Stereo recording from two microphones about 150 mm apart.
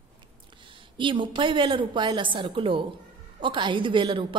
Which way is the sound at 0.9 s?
35° right (ahead or behind).